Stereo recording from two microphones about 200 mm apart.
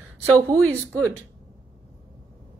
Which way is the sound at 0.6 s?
5° left (ahead or behind).